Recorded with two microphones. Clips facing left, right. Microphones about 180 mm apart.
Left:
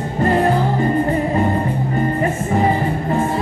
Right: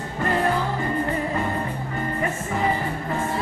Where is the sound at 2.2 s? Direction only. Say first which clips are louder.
Left 4 dB; 35° left (ahead or behind).